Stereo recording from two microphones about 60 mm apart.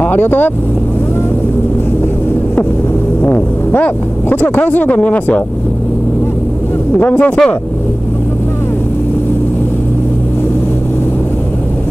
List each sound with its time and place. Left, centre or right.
0.0 s vehicle: left
3.2 s speech: left
7.0 s speech: left